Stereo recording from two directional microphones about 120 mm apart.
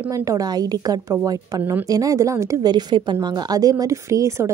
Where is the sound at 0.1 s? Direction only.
25° right (ahead or behind).